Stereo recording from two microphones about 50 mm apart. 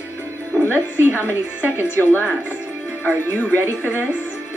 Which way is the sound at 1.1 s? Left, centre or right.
Left.